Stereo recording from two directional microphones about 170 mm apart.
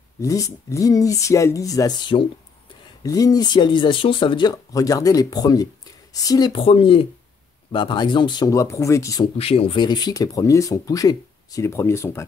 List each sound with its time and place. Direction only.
0.2 s speech: 20° left (ahead or behind)
9.4 s speech: 35° left (ahead or behind); by 12.3 s 15° left (ahead or behind)